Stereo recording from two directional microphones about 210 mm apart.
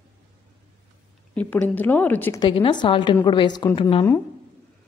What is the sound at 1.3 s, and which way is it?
A woman's voice, 5° left (ahead or behind).